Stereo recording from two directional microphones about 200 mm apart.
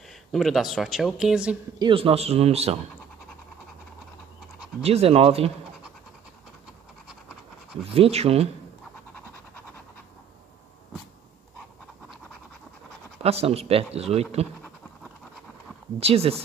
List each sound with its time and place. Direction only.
0.3 s speech: centre (ahead or behind)
1.8 s speech: 25° right (ahead or behind)
4.8 s speech: 30° right (ahead or behind)
7.8 s speech: 30° right (ahead or behind)
13.2 s speech: 30° right (ahead or behind)
16.0 s speech: 30° right (ahead or behind)